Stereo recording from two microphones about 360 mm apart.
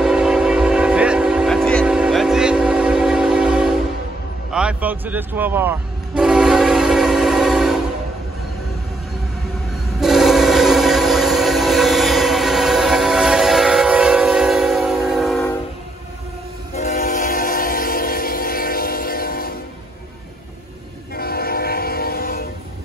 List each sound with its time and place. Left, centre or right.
0.0 s train: centre
4.5 s vehicle: centre
9.9 s train: centre
16.7 s train: left
21.1 s train: left